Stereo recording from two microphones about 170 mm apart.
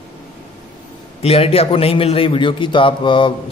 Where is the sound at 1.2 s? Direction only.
35° left (ahead or behind).